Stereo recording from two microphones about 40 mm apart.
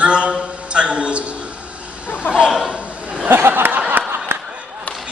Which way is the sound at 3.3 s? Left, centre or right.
Right.